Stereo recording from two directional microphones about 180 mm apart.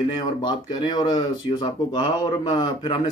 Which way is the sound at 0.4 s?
25° left (ahead or behind).